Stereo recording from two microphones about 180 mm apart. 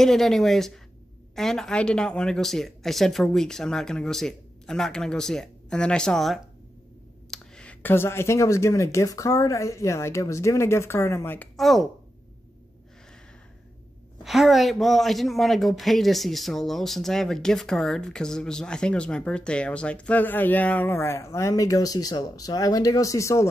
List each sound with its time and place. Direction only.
0.0 s speech: centre (ahead or behind)
11.5 s speech: centre (ahead or behind)
14.2 s speech: centre (ahead or behind); by 23.5 s 15° left (ahead or behind)